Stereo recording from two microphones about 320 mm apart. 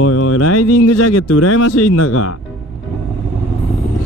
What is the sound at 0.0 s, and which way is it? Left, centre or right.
Speech, left.